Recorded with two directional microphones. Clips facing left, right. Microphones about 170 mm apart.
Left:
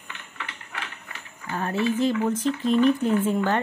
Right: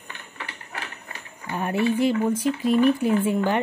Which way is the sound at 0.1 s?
40° right (ahead or behind).